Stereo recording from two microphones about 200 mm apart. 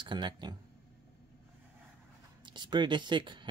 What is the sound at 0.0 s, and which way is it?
Speech, 20° right (ahead or behind).